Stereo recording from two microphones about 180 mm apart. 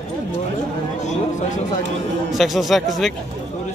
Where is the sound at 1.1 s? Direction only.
45° left (ahead or behind).